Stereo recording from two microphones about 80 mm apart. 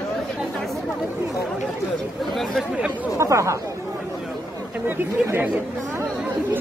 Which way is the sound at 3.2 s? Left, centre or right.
Right.